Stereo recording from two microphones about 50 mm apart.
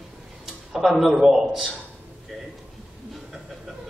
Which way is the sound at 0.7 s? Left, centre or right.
Centre.